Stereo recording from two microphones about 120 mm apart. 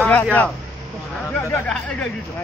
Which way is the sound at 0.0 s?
15° left (ahead or behind).